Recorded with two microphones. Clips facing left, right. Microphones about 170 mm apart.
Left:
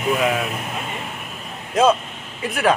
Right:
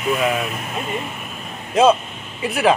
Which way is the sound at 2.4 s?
5° right (ahead or behind).